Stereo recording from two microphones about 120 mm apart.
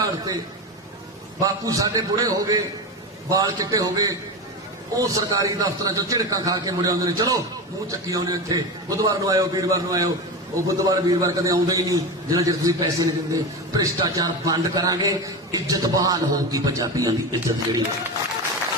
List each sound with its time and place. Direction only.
1.4 s a man's voice: 30° right (ahead or behind)